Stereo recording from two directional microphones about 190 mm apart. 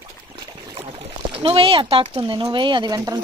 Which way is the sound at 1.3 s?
30° right (ahead or behind).